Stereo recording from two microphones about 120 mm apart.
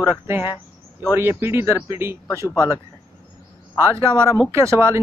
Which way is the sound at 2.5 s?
25° left (ahead or behind).